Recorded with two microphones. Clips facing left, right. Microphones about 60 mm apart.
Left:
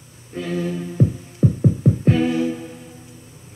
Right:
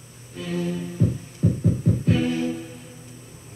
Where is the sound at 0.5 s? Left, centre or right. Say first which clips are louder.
Left 3 dB; left.